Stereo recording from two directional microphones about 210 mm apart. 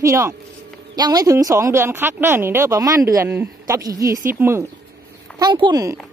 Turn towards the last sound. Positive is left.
turn(degrees=-20)  # may be behind; listen again after turning